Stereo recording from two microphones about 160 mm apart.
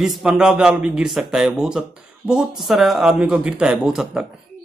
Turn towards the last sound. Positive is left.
turn(degrees=-5)  # may be behind; listen again after turning